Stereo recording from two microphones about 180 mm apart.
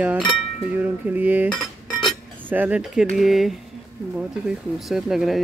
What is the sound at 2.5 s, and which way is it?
Speech, 10° right (ahead or behind).